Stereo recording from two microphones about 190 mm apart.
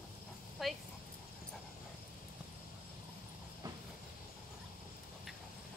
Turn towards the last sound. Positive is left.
turn(degrees=-20)  # may be behind; listen again after turning